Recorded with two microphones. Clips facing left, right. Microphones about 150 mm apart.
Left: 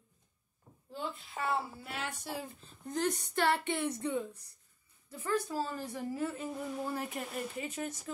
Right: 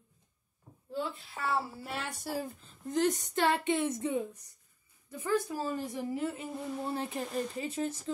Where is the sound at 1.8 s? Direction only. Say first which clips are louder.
Right 2 dB; 40° right (ahead or behind).